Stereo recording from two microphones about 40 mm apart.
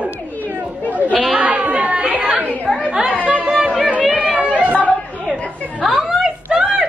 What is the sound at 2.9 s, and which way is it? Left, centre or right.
Chatter, right.